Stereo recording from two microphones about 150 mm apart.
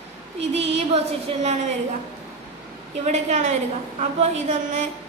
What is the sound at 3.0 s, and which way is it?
Music, 50° right (ahead or behind).